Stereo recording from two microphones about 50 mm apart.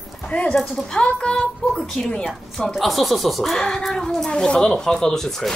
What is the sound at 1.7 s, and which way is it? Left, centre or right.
Speech, centre.